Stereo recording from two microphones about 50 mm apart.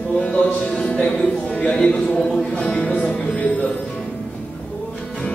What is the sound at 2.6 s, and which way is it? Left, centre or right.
Music, left.